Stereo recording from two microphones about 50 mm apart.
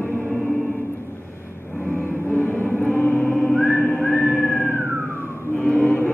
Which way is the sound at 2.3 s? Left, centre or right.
Left.